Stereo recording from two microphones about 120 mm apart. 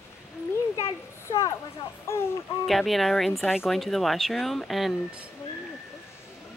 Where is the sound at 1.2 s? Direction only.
25° left (ahead or behind).